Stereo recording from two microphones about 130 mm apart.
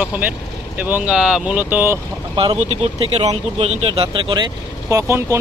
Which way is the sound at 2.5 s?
55° right (ahead or behind).